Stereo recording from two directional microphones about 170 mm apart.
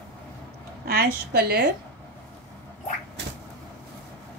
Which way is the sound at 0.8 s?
65° right (ahead or behind).